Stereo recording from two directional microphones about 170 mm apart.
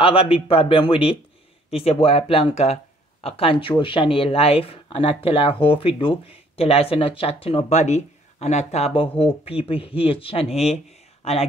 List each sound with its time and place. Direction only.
0.0 s speech: 30° left (ahead or behind)